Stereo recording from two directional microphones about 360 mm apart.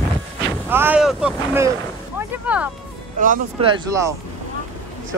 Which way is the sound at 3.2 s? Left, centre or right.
Centre.